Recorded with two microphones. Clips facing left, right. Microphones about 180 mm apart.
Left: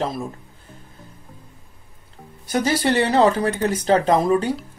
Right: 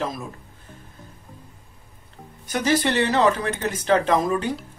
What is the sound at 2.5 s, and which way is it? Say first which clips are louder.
Speech: left 2 dB; 35° left (ahead or behind).